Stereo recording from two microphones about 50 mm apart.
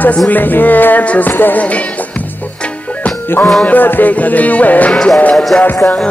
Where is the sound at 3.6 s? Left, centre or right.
Left.